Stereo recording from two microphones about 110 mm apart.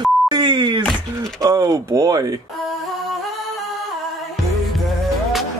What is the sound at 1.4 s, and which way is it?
A man's voice, 30° right (ahead or behind).